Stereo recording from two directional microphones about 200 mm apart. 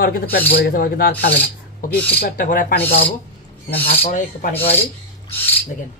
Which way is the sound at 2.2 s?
40° left (ahead or behind).